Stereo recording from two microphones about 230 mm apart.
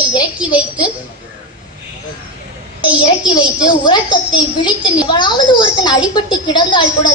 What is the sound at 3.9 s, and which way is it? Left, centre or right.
A woman's voice, centre.